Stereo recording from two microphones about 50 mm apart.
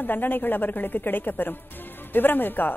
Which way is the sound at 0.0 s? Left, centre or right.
Left.